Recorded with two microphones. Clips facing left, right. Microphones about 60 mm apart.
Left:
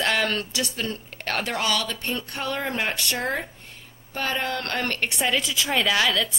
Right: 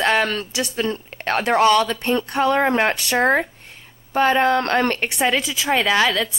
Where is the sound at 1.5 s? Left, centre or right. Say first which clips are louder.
Right 10 dB; right.